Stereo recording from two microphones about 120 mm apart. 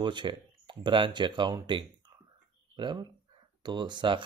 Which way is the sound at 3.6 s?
40° right (ahead or behind).